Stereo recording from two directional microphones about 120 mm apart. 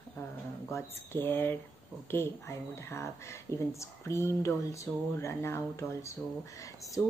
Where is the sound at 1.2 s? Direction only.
15° left (ahead or behind).